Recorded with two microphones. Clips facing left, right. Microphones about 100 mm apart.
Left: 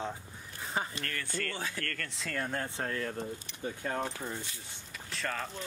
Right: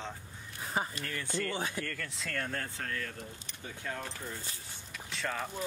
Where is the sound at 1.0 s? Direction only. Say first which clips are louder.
Right 1 dB; 15° right (ahead or behind); by 2.5 s 5° left (ahead or behind).